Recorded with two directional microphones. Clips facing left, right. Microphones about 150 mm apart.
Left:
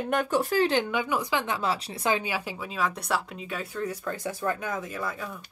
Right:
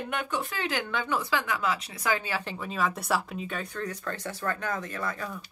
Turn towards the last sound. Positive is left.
turn(degrees=5)  # may be behind; listen again after turning